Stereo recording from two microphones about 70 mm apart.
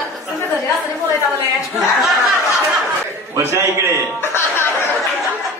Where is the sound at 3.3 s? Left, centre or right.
Right.